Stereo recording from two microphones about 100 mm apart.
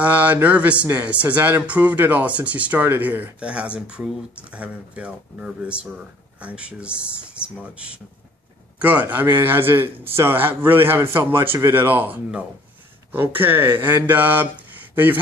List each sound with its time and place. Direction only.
0.0 s a man's voice: 15° right (ahead or behind)